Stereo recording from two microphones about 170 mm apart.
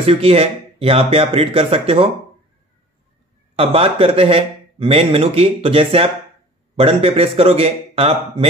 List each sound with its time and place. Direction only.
0.0 s speech: 35° right (ahead or behind)
3.5 s speech: 35° right (ahead or behind)